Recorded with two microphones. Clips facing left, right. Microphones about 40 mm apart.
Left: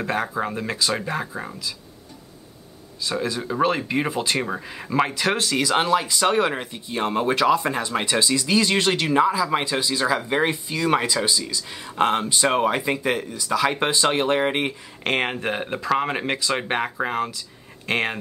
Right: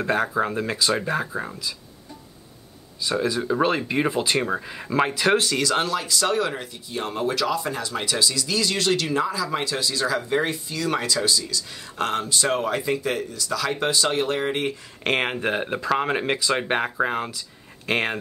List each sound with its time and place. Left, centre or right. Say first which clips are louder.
0.0 s speech: right 2 dB; centre
3.0 s speech: right 2 dB; centre
5.6 s speech: left 3 dB; centre
15.0 s speech: even; centre